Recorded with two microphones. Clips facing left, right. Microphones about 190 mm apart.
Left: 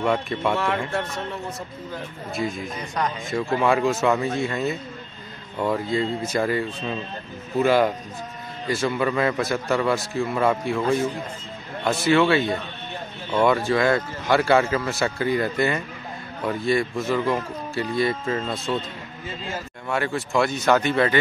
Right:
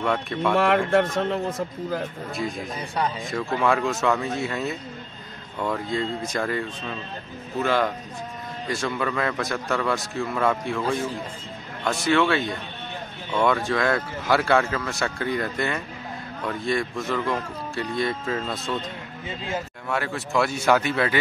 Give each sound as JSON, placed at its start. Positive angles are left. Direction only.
{"t": 0.0, "sound": "speech", "side_deg": 0}
{"t": 0.9, "sound": "a man's voice", "side_deg": -90}
{"t": 2.3, "sound": "speech", "side_deg": 0}
{"t": 19.2, "sound": "speech", "side_deg": -20}
{"t": 19.9, "sound": "speech", "side_deg": 0}